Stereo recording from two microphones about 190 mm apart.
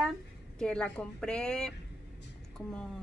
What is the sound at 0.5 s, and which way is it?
A woman's voice, 5° left (ahead or behind).